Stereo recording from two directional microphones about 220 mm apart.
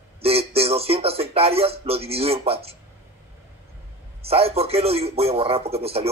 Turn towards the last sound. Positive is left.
turn(degrees=-25)  # may be behind; listen again after turning